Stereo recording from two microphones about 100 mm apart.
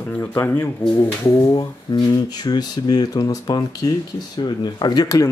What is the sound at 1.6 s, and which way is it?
Speech, 45° left (ahead or behind).